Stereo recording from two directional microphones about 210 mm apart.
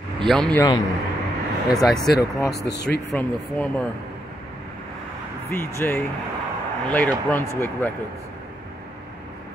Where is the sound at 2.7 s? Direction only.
50° left (ahead or behind).